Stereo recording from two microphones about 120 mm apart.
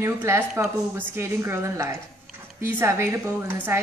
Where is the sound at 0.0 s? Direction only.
20° right (ahead or behind).